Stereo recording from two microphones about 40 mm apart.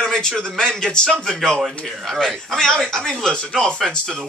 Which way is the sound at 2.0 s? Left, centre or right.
Centre.